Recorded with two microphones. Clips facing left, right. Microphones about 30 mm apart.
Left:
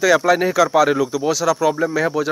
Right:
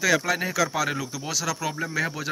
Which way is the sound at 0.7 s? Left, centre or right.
Centre.